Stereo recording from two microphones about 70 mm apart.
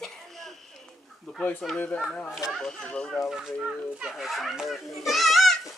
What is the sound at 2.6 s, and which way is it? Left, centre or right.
Speech, centre.